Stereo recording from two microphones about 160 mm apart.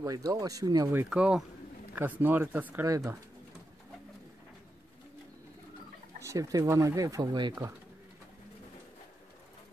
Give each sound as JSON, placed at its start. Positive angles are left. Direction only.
{"t": 0.0, "sound": "speech", "side_deg": -20}
{"t": 1.1, "sound": "speech", "side_deg": -5}
{"t": 6.1, "sound": "speech", "side_deg": -20}